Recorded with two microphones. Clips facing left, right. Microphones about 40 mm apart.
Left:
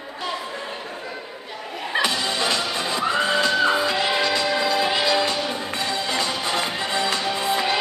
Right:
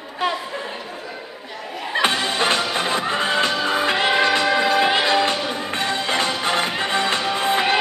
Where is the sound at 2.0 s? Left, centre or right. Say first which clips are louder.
Right 5 dB; right.